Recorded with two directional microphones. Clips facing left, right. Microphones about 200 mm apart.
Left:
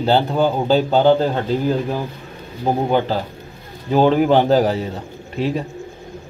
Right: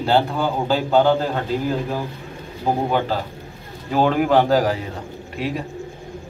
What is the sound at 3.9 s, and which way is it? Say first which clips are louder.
Speech: left 3 dB; 25° left (ahead or behind).